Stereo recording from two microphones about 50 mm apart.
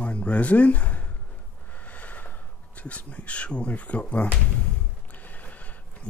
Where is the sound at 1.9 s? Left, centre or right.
Left.